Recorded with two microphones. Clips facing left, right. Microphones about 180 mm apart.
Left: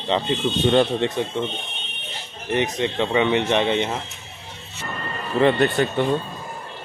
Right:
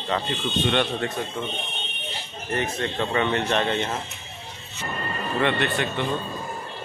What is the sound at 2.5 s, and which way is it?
A man's voice, 20° left (ahead or behind).